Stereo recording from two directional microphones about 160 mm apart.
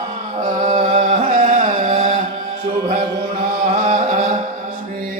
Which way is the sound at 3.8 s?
50° right (ahead or behind).